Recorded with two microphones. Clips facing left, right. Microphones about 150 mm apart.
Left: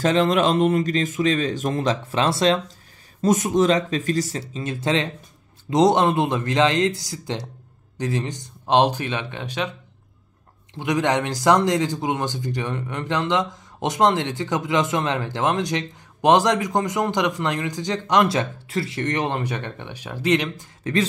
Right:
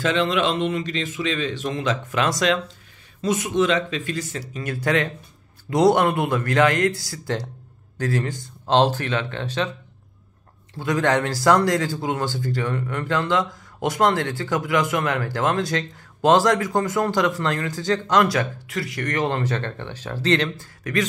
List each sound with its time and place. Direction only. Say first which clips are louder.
0.0 s speech: left 3 dB; 40° left (ahead or behind)
3.2 s speech: left 3 dB; 45° left (ahead or behind)
4.4 s speech: left 1 dB; 25° left (ahead or behind)
10.7 s speech: even; 20° left (ahead or behind)
20.8 s speech: left 2 dB; 30° left (ahead or behind)